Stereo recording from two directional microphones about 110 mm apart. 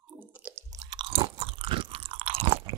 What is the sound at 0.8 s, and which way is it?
Chewing, 45° right (ahead or behind).